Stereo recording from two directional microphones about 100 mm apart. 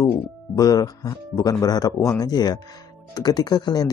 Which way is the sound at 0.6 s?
40° left (ahead or behind).